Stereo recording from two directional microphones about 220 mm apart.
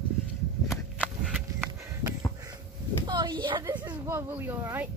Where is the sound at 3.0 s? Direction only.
20° right (ahead or behind).